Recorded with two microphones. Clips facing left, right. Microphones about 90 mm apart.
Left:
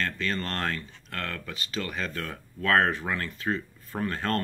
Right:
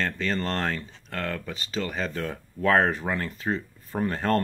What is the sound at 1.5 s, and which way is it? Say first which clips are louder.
Speech: right 3 dB; 30° right (ahead or behind).